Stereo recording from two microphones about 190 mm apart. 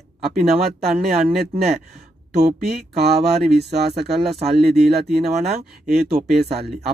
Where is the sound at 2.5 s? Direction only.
60° right (ahead or behind).